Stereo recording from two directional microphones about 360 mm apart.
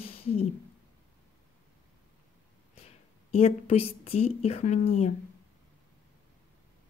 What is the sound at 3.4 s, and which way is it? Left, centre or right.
A woman's voice, centre.